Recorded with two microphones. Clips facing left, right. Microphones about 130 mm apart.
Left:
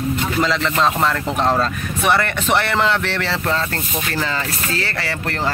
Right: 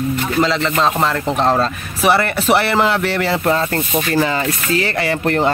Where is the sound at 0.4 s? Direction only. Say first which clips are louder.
Right 3 dB; centre (ahead or behind).